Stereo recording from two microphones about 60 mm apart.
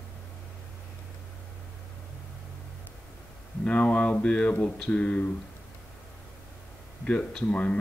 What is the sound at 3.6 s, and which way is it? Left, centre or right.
Speech, left.